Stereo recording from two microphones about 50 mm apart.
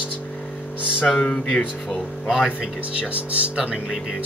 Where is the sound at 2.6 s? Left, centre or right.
Right.